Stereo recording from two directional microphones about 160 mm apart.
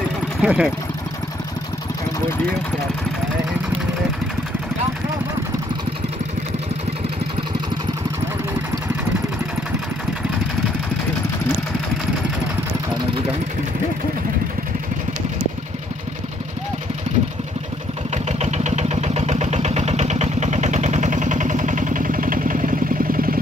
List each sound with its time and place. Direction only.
0.4 s speech: 5° right (ahead or behind)
18.1 s vehicle: 45° right (ahead or behind)